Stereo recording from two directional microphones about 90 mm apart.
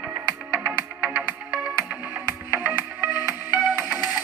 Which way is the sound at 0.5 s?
25° right (ahead or behind).